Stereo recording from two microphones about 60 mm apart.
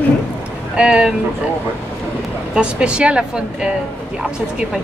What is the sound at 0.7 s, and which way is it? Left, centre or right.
Speech, centre.